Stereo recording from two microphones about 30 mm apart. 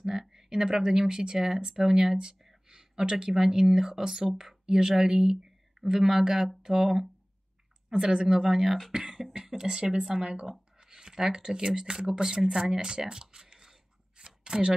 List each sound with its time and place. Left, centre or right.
0.2 s a sound: centre
0.6 s speech: right
7.9 s speech: right
12.7 s speech: right
13.2 s a sound: right
14.5 s speech: right